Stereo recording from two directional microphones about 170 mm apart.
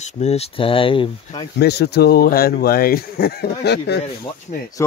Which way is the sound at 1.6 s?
75° left (ahead or behind).